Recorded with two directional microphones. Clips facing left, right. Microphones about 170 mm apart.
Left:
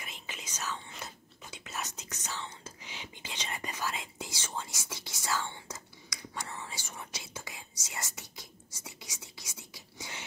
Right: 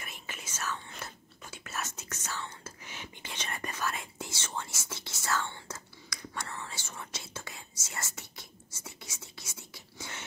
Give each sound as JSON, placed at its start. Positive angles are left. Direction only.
{"t": 0.3, "sound": "whispering", "side_deg": 15}